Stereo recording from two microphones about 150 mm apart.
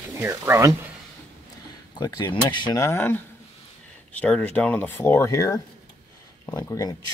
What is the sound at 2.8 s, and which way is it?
Speech, 15° left (ahead or behind).